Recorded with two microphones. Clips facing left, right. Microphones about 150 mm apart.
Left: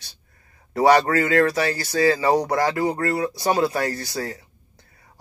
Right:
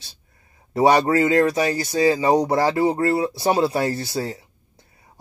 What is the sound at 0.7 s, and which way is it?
Speech, 25° right (ahead or behind).